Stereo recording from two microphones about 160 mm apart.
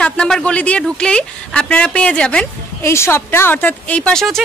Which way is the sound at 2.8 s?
15° left (ahead or behind).